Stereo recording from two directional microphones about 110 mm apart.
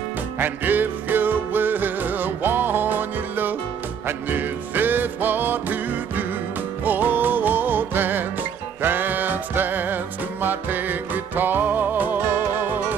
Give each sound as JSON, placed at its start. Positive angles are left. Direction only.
{"t": 0.4, "sound": "music", "side_deg": -15}